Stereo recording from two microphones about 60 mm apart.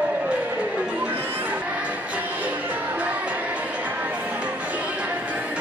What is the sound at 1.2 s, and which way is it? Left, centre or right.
Crowd, right.